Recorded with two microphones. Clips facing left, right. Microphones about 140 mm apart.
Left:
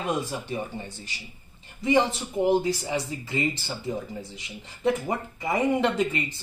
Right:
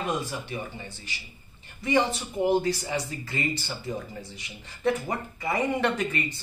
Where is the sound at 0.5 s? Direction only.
35° left (ahead or behind).